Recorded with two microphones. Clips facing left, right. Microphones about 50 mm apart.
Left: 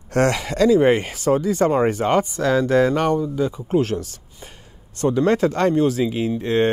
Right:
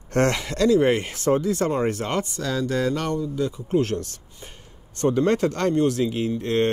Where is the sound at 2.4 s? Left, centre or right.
Left.